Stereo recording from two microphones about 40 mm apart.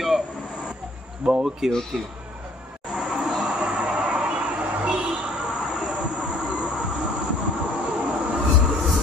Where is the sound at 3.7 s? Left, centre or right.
Right.